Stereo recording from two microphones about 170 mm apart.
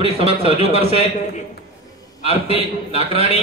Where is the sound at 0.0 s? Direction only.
35° right (ahead or behind).